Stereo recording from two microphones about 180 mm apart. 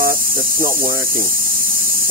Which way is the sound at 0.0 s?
50° right (ahead or behind).